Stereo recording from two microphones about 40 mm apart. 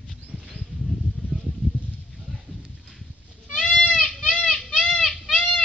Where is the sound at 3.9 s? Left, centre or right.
Centre.